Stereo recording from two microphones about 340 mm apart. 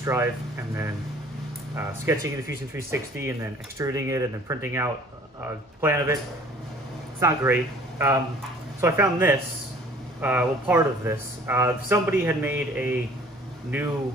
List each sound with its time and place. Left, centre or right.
0.0 s speech: centre
7.2 s speech: centre